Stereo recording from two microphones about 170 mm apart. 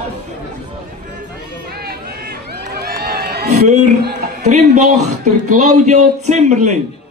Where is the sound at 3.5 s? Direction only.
45° right (ahead or behind).